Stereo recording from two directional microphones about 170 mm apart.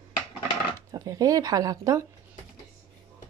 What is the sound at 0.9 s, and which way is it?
A woman's voice, 20° right (ahead or behind).